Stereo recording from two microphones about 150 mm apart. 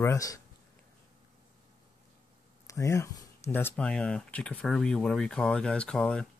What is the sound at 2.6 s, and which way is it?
Speech, 20° left (ahead or behind).